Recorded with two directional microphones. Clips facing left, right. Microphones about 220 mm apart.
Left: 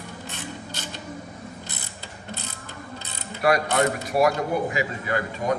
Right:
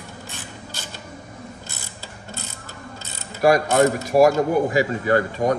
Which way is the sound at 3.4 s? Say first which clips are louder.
Right 5 dB; 45° right (ahead or behind).